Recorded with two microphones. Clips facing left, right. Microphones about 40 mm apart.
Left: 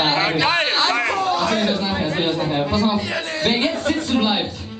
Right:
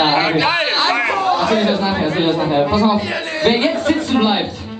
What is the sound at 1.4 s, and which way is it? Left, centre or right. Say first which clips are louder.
A man's voice: right 4 dB; centre.